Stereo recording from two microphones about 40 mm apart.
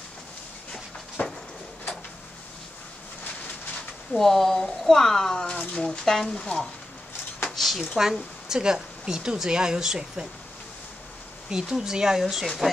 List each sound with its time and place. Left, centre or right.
1.2 s a sound: left
4.1 s speech: centre
7.5 s speech: centre
8.5 s speech: centre
11.5 s speech: centre